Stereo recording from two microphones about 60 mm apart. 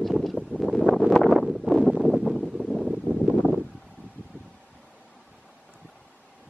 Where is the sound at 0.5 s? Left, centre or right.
Centre.